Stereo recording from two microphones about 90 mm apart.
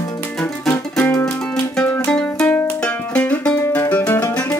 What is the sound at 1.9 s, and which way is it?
Music, 15° left (ahead or behind).